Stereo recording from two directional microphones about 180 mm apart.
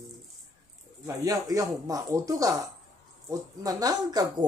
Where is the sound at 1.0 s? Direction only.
20° right (ahead or behind).